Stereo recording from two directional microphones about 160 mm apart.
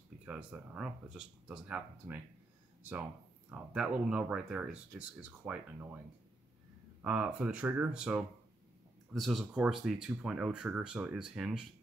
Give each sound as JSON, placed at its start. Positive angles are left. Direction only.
{"t": 0.2, "sound": "speech", "side_deg": -5}
{"t": 3.4, "sound": "speech", "side_deg": -5}
{"t": 7.0, "sound": "speech", "side_deg": -10}